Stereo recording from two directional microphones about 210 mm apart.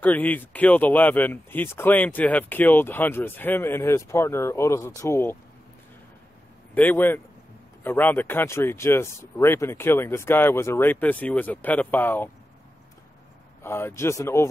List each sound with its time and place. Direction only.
0.0 s speech: 10° left (ahead or behind)
6.7 s speech: 10° left (ahead or behind)
13.6 s speech: 10° left (ahead or behind)